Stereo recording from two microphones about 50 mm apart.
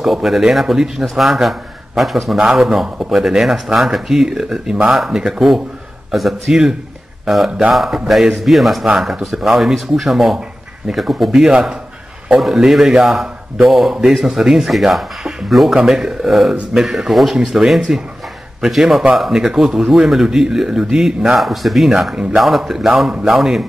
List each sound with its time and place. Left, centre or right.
0.0 s a man's voice: centre
11.5 s speech: centre
12.4 s a man's voice: centre